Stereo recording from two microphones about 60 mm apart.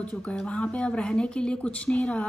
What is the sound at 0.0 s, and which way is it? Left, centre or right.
Speech, centre.